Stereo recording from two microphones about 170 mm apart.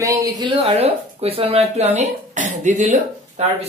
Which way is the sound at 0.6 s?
35° right (ahead or behind).